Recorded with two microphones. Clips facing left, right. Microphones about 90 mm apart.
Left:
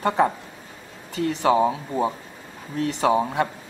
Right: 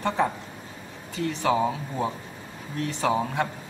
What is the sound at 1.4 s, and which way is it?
Speech, 10° left (ahead or behind).